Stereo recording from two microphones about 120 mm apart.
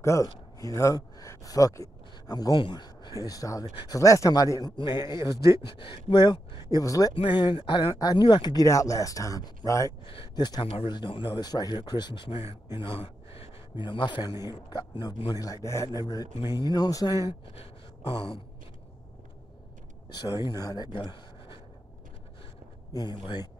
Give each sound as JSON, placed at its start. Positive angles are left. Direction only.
{"t": 0.0, "sound": "a man's voice", "side_deg": 25}
{"t": 7.2, "sound": "speech", "side_deg": 40}
{"t": 12.7, "sound": "a man's voice", "side_deg": 50}
{"t": 20.1, "sound": "speech", "side_deg": 35}
{"t": 22.9, "sound": "speech", "side_deg": 35}